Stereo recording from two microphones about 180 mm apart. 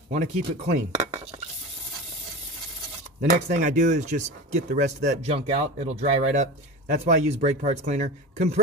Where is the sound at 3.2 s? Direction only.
45° right (ahead or behind).